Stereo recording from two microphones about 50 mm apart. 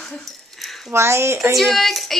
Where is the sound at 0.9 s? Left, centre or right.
Right.